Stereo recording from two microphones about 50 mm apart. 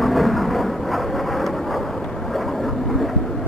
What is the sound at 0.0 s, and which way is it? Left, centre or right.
Thunder, centre.